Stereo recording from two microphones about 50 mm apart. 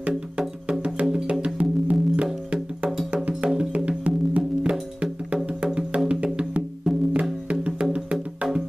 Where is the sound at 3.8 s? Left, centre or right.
Right.